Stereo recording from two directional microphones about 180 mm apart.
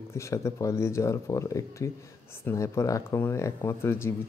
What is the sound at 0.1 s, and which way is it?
Speech, 15° left (ahead or behind).